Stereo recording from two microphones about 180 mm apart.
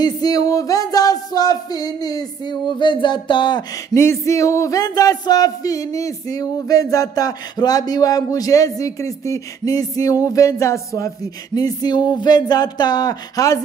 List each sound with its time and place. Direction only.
0.0 s music: 20° left (ahead or behind)